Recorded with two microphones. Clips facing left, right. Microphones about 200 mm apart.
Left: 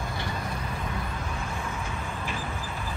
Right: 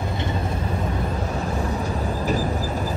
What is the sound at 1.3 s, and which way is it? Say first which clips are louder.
Vehicle: right 9 dB; 40° right (ahead or behind).